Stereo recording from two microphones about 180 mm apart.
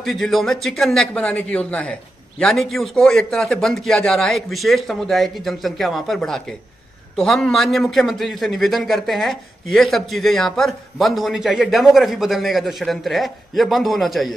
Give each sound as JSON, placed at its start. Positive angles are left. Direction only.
{"t": 0.0, "sound": "a man's voice", "side_deg": 0}